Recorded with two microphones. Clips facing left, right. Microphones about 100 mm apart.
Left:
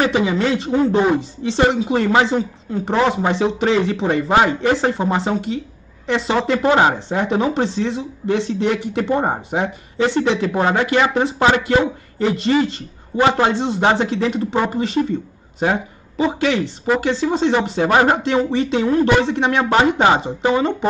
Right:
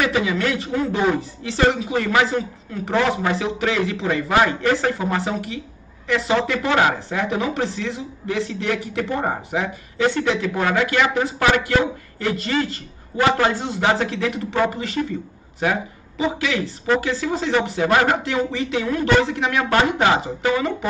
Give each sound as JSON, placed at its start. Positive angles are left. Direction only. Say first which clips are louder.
{"t": 0.0, "sound": "speech", "louder": "left 3 dB", "side_deg": 30}